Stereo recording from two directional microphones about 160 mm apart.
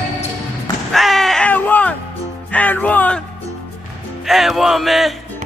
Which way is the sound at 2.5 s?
10° left (ahead or behind).